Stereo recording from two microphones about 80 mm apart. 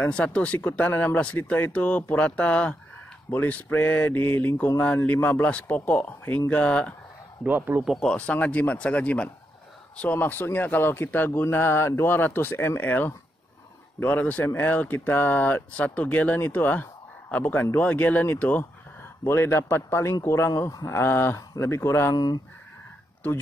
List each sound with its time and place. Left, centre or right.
0.0 s speech: centre
7.4 s a man's voice: right
8.0 s a man's voice: centre; by 22.1 s left
22.1 s speech: left